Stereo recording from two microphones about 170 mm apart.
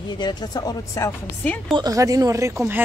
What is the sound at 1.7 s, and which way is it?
Speech, 25° right (ahead or behind).